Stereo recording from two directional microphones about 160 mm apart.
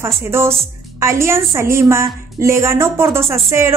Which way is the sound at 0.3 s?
15° right (ahead or behind).